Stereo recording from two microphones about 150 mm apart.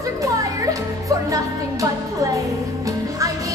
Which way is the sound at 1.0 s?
20° right (ahead or behind).